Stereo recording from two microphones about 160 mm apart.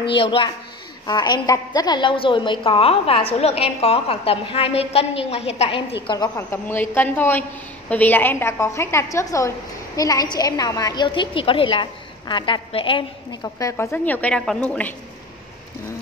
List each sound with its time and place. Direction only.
0.1 s a woman's voice: 35° left (ahead or behind)
6.3 s a woman's voice: 15° left (ahead or behind)